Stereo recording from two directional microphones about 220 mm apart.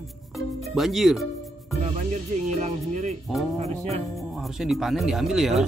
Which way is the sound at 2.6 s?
30° right (ahead or behind).